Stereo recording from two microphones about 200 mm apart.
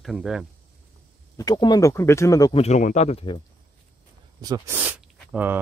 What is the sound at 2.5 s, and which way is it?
Speech, 35° left (ahead or behind).